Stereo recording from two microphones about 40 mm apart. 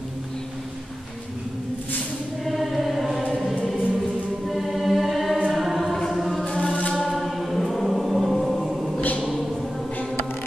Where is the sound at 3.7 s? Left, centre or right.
Right.